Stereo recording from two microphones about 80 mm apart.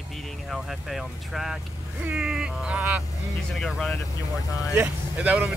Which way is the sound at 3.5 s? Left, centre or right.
Centre.